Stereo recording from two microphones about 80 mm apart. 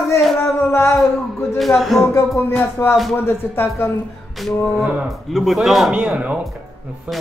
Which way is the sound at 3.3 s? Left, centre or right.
Left.